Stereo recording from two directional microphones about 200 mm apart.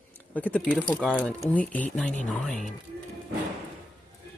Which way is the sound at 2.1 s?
35° left (ahead or behind).